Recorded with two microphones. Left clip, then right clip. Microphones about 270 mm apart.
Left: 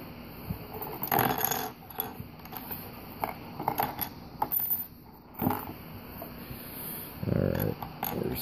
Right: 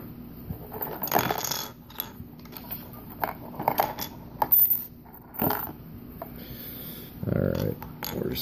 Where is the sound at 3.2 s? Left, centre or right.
Right.